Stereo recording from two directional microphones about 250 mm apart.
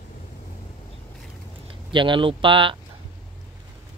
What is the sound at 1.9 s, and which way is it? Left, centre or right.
Speech, centre.